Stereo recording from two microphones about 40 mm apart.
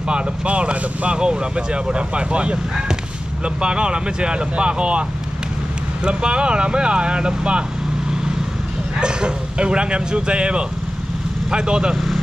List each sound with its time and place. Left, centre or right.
0.1 s speech: right
6.0 s speech: right
9.0 s speech: right
11.9 s vehicle: centre